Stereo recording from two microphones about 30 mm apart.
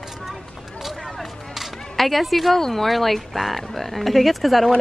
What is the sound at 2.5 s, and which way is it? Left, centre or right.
Speech, centre.